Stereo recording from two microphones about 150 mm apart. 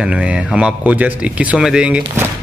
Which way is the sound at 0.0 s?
5° right (ahead or behind).